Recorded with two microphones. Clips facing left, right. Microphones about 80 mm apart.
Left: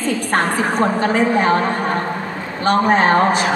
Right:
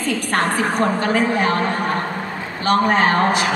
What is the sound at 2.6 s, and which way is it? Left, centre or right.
Speech, left.